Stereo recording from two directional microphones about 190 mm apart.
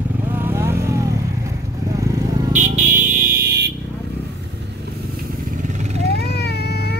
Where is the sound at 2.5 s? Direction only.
40° right (ahead or behind); by 3.7 s 60° right (ahead or behind).